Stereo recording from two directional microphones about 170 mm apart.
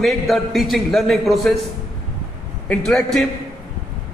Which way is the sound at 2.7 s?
5° left (ahead or behind).